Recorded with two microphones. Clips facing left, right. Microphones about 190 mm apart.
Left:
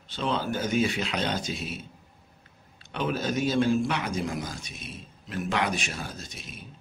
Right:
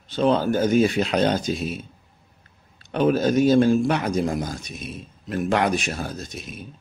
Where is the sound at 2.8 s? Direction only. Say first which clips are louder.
Right 10 dB; 45° right (ahead or behind).